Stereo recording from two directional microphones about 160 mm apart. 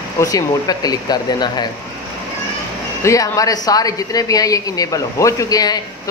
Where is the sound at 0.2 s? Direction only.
25° left (ahead or behind).